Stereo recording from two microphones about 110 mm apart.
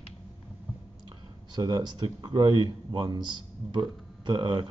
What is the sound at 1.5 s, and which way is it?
Speech, 40° right (ahead or behind).